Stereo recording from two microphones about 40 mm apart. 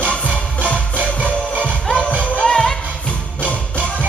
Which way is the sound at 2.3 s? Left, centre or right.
Centre.